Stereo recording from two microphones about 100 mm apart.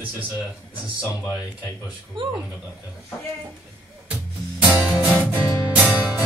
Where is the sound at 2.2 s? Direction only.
55° right (ahead or behind).